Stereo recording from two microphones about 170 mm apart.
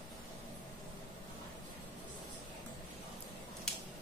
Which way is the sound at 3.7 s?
5° left (ahead or behind).